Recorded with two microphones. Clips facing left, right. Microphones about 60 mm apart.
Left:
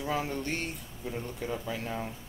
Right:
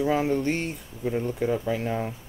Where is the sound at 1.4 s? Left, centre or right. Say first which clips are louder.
Right 8 dB; right.